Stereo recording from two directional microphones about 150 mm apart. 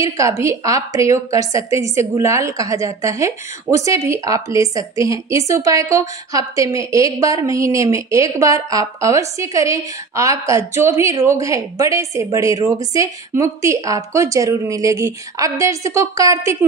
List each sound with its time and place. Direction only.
0.0 s speech: 20° right (ahead or behind)